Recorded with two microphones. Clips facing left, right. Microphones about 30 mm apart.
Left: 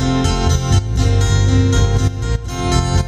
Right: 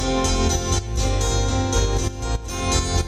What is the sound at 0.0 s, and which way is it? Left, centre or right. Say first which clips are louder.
Music: left 4 dB; left.